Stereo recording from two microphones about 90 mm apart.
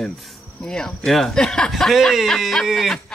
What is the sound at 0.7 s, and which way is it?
Speech, 5° left (ahead or behind).